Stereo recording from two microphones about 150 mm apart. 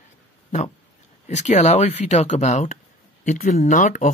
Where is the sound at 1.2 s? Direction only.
50° left (ahead or behind).